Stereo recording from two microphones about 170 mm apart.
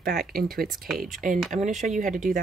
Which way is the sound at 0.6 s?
Centre (ahead or behind).